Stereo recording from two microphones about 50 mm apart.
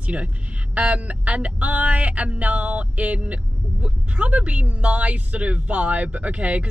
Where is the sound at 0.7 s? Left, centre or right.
Right.